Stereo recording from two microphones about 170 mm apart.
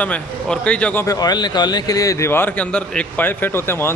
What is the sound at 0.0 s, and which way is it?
Speech, 10° left (ahead or behind).